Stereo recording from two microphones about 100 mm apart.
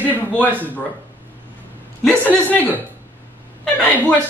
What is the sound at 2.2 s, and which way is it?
Speech, 15° left (ahead or behind).